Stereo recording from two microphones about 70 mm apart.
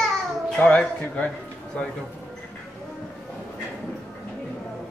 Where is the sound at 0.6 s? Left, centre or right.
Centre.